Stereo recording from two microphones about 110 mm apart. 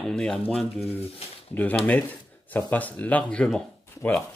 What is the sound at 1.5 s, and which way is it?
Speech, 15° left (ahead or behind).